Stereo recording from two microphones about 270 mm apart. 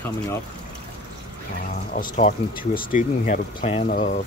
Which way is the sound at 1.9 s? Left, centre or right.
Left.